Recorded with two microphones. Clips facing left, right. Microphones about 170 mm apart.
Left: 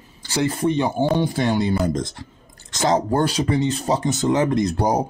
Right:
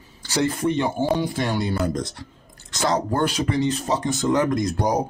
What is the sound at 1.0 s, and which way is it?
Speech, 20° left (ahead or behind).